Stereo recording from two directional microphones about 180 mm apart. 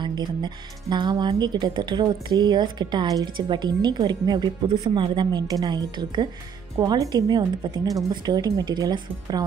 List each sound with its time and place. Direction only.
0.0 s speech: 25° right (ahead or behind)